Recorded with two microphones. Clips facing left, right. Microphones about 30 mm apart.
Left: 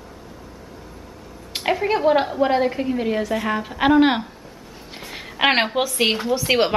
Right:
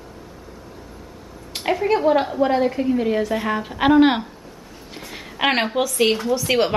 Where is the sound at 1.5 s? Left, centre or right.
Centre.